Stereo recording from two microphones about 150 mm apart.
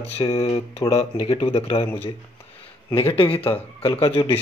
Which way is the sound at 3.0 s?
40° left (ahead or behind).